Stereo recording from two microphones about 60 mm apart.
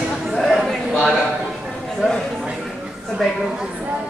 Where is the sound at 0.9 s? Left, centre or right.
Centre.